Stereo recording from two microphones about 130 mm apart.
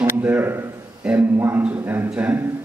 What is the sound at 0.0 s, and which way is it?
A man's voice, 15° right (ahead or behind).